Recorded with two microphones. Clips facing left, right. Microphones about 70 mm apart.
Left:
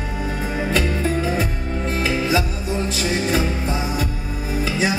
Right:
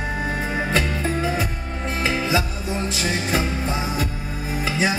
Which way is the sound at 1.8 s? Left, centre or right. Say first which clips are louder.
Left 1 dB; right.